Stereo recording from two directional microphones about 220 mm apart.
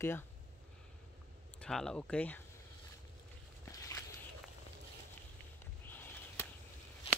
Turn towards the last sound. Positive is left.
turn(degrees=10)  # may be behind; listen again after turning